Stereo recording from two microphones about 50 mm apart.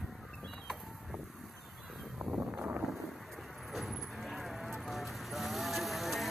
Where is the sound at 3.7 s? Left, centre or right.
Centre.